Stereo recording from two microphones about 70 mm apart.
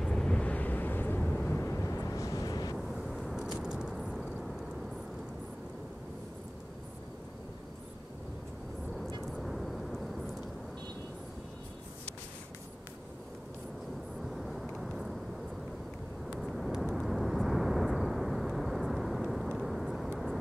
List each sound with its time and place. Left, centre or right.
0.0 s vehicle: centre
1.6 s vehicle: left
2.8 s vehicle: centre
3.5 s a sound: centre
3.9 s a sound: centre
9.2 s vehicle: centre
14.2 s vehicle: centre
16.3 s vehicle: centre